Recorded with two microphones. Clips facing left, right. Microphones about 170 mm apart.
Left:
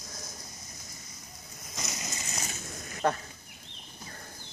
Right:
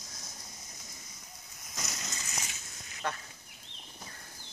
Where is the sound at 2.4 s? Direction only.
50° left (ahead or behind).